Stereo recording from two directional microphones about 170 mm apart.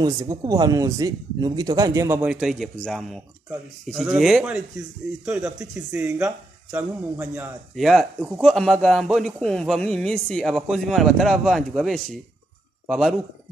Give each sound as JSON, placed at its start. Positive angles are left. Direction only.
{"t": 0.0, "sound": "speech", "side_deg": -20}
{"t": 2.2, "sound": "a man's voice", "side_deg": 0}